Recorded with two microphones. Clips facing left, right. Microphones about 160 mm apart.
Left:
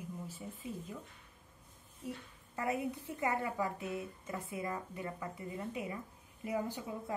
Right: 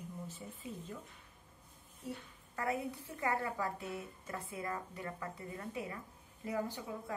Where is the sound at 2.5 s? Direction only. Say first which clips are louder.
Left 1 dB; 20° left (ahead or behind).